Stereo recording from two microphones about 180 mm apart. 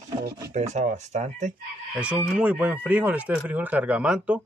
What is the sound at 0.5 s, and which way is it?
Speech, 40° right (ahead or behind).